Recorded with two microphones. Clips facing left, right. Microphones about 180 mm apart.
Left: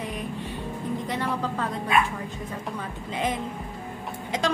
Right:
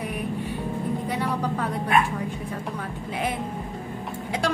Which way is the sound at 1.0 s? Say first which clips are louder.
Right 2 dB; 10° right (ahead or behind).